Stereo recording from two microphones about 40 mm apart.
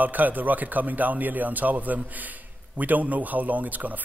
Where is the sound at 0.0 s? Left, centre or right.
Right.